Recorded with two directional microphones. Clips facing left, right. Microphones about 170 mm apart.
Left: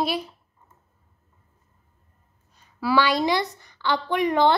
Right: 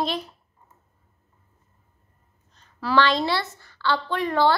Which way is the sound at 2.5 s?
10° left (ahead or behind).